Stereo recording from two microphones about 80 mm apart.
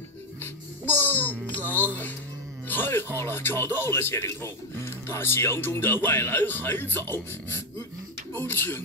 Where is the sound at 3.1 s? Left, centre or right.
Left.